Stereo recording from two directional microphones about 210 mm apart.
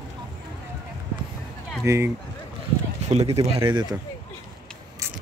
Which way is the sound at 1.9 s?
10° right (ahead or behind).